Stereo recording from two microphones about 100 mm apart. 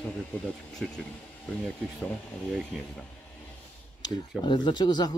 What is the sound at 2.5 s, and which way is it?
Speech, centre (ahead or behind).